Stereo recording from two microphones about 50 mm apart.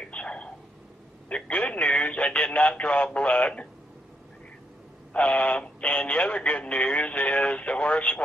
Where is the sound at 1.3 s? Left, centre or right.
Left.